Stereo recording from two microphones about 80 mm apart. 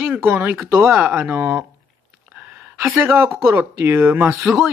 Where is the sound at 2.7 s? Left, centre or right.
Right.